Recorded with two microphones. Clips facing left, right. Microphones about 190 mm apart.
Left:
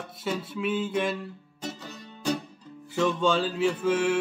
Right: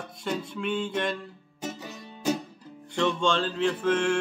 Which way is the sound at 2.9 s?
5° left (ahead or behind).